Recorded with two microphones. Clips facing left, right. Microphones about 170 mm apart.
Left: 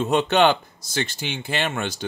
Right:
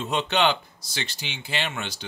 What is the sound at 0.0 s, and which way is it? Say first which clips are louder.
Speech: left 5 dB; 50° left (ahead or behind).